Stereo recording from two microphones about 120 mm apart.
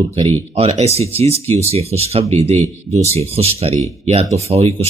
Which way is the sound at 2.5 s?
25° left (ahead or behind).